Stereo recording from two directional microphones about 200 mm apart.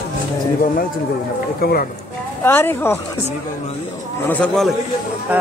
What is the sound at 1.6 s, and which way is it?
Speech, 50° left (ahead or behind).